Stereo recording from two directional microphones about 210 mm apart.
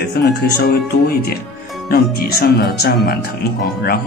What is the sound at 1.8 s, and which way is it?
Speech, 45° left (ahead or behind).